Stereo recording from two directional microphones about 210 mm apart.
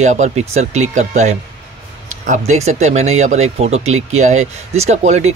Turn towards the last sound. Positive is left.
turn(degrees=-30)  # may be behind; listen again after turning